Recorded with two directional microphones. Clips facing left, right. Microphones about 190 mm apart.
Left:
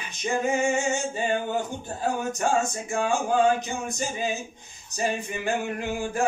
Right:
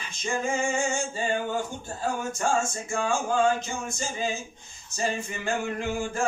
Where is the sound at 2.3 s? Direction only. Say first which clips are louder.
Left 1 dB; 20° left (ahead or behind).